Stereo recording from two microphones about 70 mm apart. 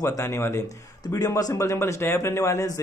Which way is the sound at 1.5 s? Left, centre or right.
Left.